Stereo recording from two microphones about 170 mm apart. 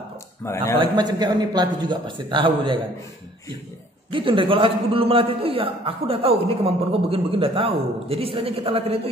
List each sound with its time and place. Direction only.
0.4 s a man's voice: 15° left (ahead or behind)
0.7 s a man's voice: 25° right (ahead or behind)
4.1 s a man's voice: 30° right (ahead or behind)